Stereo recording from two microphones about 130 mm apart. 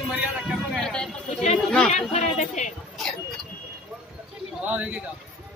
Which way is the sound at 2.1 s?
65° left (ahead or behind).